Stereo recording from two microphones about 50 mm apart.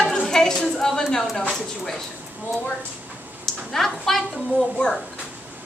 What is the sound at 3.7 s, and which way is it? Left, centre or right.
Speech, centre.